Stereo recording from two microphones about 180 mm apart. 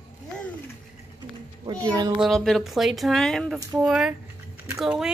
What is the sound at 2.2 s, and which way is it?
Speech, centre (ahead or behind).